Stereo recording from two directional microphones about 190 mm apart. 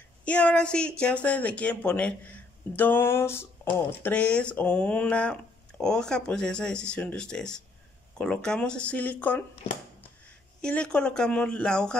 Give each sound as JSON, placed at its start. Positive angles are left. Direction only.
{"t": 0.2, "sound": "speech", "side_deg": 5}
{"t": 10.6, "sound": "speech", "side_deg": 5}